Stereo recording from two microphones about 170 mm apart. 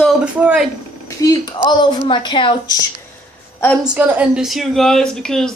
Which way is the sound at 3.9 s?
10° right (ahead or behind).